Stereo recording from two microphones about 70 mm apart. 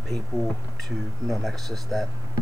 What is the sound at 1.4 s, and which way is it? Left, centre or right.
Speech, centre.